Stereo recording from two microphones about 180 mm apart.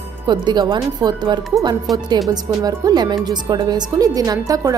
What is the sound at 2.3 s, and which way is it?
A woman's voice, 20° right (ahead or behind).